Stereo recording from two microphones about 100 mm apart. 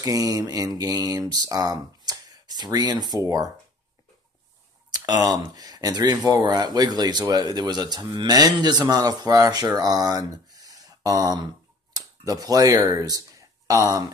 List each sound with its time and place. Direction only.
0.0 s speech: 35° right (ahead or behind)
4.9 s speech: 40° right (ahead or behind)